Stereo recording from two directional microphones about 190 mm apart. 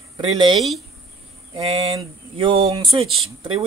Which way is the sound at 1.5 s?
30° right (ahead or behind).